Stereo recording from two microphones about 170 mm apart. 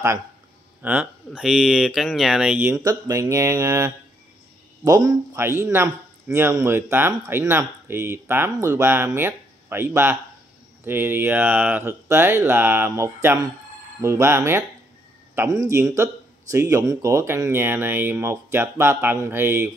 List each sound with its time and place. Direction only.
0.8 s speech: 5° right (ahead or behind)
2.8 s a man's voice: 20° right (ahead or behind)